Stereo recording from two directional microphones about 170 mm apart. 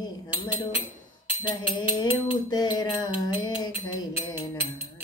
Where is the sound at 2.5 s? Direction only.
25° left (ahead or behind).